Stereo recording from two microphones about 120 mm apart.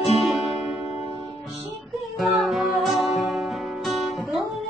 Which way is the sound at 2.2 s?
Centre (ahead or behind).